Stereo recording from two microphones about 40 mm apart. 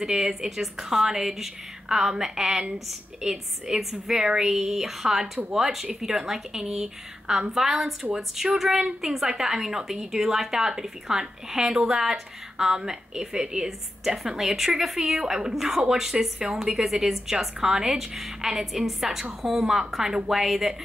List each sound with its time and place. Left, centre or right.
0.0 s a woman's voice: centre